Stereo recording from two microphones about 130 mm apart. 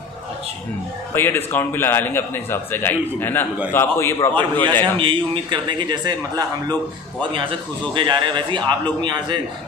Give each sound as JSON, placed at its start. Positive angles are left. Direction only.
{"t": 1.1, "sound": "a man's voice", "side_deg": 15}
{"t": 4.9, "sound": "speech", "side_deg": -40}
{"t": 7.9, "sound": "speech", "side_deg": -40}